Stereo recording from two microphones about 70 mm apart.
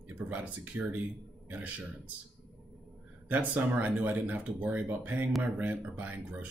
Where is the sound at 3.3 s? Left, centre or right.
Right.